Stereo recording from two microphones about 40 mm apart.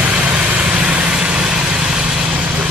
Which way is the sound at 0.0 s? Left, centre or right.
Right.